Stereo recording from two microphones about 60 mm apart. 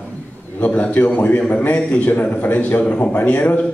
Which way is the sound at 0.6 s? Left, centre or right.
Left.